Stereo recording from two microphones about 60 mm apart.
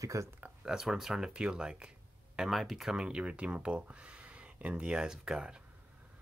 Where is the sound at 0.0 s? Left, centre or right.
Right.